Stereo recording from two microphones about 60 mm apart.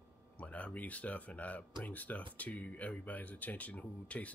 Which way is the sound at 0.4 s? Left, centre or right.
Left.